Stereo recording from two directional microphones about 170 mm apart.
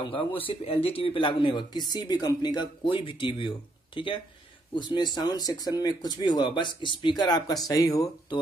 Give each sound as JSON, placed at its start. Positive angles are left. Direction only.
{"t": 0.0, "sound": "speech", "side_deg": 30}